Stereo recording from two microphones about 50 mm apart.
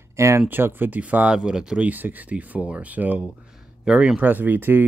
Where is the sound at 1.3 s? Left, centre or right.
Centre.